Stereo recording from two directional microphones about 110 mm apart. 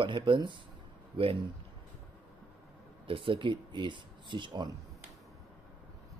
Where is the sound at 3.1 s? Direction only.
50° right (ahead or behind).